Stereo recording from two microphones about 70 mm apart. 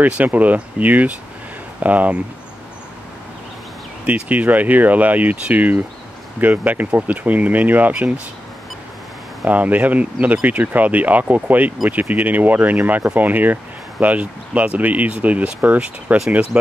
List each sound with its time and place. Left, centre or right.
0.0 s speech: right
4.0 s speech: right
9.4 s speech: right